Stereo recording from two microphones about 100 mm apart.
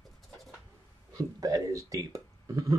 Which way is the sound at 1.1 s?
35° right (ahead or behind).